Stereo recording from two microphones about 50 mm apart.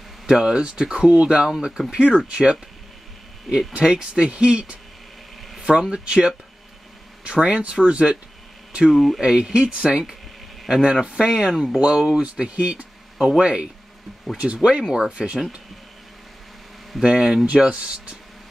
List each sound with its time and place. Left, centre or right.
0.3 s speech: centre
1.5 s speech: centre
3.7 s speech: right
7.3 s speech: centre
8.9 s speech: centre
9.2 s speech: centre
10.6 s a sound: centre
10.9 s speech: centre
17.1 s speech: centre
17.5 s speech: right